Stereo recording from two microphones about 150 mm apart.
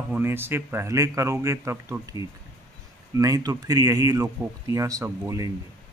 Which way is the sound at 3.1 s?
25° right (ahead or behind).